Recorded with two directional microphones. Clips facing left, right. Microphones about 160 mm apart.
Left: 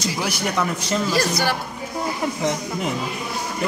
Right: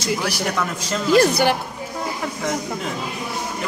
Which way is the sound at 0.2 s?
15° left (ahead or behind).